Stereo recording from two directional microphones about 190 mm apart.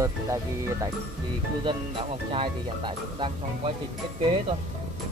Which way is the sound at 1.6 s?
25° right (ahead or behind).